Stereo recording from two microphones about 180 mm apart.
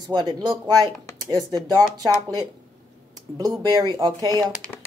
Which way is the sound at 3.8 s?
20° right (ahead or behind).